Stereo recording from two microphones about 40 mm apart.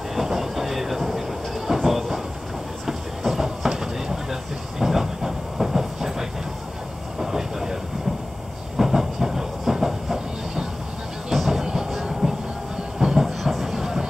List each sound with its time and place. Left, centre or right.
0.1 s train: centre
8.7 s train: centre
11.3 s music: centre
11.6 s music: centre
11.9 s train: centre